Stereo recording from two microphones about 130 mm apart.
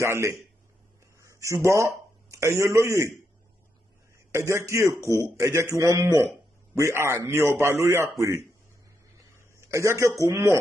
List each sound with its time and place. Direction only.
0.0 s a man's voice: 20° right (ahead or behind)
4.3 s a man's voice: 20° right (ahead or behind)
9.6 s a man's voice: 20° right (ahead or behind)